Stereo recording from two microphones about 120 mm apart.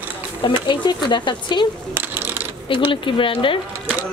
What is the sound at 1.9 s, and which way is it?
Ratchet, 15° right (ahead or behind).